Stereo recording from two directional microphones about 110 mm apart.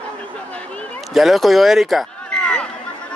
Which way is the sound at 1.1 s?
Centre (ahead or behind).